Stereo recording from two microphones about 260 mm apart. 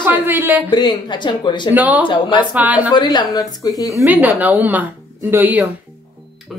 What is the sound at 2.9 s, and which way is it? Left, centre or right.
Speech, centre.